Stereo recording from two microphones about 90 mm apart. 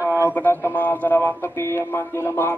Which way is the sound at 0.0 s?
20° right (ahead or behind).